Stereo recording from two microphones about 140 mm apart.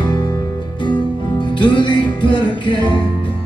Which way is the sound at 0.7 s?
35° left (ahead or behind).